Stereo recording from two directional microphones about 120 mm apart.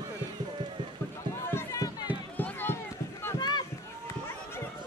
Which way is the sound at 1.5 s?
25° left (ahead or behind).